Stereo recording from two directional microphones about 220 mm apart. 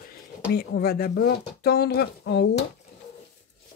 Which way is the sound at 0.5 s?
45° left (ahead or behind).